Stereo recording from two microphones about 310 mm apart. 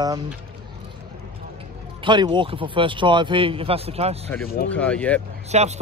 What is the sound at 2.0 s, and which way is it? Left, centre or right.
Speech, centre.